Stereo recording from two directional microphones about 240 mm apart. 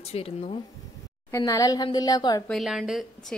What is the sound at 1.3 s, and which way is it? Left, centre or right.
Speech, centre.